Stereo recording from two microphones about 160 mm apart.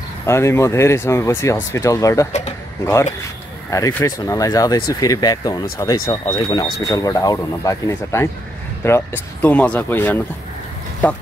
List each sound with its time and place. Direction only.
0.3 s speech: 15° left (ahead or behind)